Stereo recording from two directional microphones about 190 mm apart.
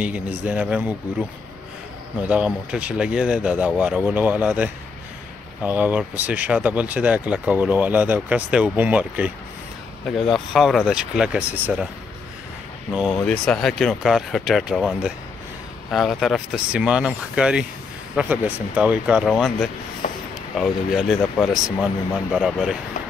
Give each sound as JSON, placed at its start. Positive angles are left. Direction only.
{"t": 0.0, "sound": "speech", "side_deg": -5}
{"t": 2.2, "sound": "speech", "side_deg": -5}
{"t": 12.9, "sound": "speech", "side_deg": -5}
{"t": 20.0, "sound": "a sound", "side_deg": 45}
{"t": 20.5, "sound": "speech", "side_deg": 0}